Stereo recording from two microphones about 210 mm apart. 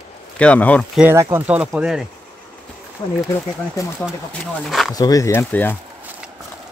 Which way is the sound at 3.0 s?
20° left (ahead or behind).